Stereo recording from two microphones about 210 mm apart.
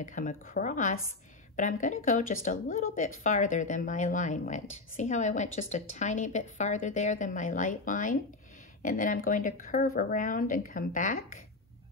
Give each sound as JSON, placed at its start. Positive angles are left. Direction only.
{"t": 0.0, "sound": "speech", "side_deg": 40}